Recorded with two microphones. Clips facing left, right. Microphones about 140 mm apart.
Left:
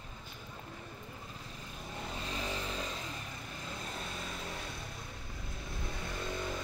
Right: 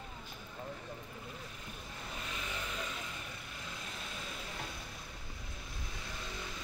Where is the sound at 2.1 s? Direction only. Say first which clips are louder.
Left 4 dB; 35° left (ahead or behind).